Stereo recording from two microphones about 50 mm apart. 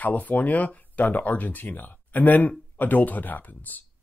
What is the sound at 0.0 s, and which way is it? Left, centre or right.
Speech, left.